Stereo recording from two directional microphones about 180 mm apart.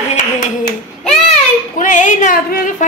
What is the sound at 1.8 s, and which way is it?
Speech, 45° left (ahead or behind).